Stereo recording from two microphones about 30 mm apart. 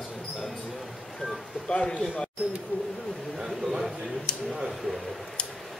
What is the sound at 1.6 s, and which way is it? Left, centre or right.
Speech, left.